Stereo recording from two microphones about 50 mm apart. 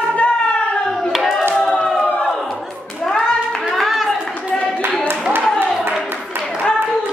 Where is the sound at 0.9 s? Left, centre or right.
Centre.